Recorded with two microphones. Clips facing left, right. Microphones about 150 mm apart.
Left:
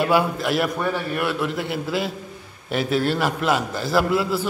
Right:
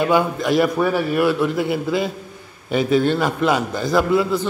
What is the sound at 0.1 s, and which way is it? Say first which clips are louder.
A man's voice: right 3 dB; 5° left (ahead or behind).